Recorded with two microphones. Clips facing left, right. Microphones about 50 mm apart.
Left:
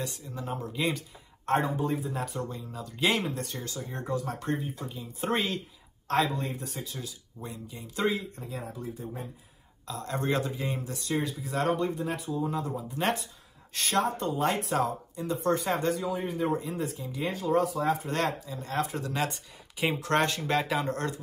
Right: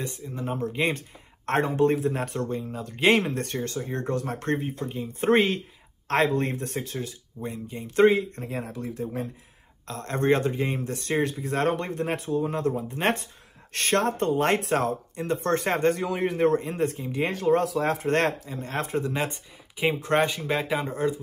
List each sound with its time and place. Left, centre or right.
0.0 s speech: right
0.7 s speech: right
2.7 s speech: right
4.0 s speech: right
8.7 s speech: right
9.8 s a man's voice: right
18.1 s a man's voice: right
19.0 s speech: right
20.0 s speech: centre